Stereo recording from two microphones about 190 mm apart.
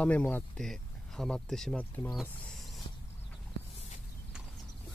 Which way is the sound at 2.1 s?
Centre (ahead or behind).